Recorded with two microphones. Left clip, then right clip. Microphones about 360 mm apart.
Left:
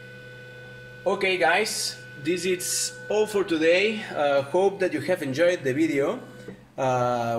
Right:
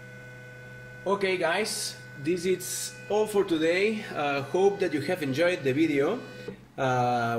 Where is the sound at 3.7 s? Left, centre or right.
Left.